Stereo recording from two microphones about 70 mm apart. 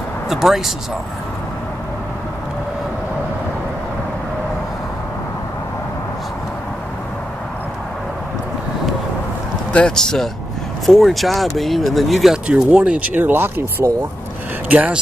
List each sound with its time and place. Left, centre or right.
0.3 s speech: centre
9.7 s speech: centre
12.4 s speech: centre